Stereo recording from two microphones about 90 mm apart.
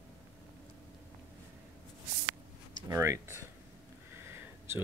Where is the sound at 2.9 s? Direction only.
30° right (ahead or behind).